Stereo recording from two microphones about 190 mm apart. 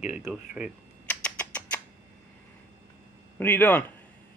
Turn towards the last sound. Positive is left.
turn(degrees=10)  # may be behind; listen again after turning